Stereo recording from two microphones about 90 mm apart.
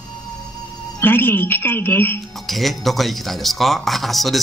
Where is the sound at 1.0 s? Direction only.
25° left (ahead or behind).